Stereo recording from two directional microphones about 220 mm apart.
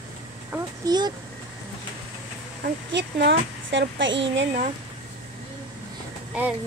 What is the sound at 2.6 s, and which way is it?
Speech, 50° right (ahead or behind).